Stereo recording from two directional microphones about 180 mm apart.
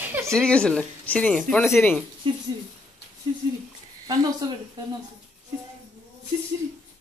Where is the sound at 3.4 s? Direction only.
20° right (ahead or behind).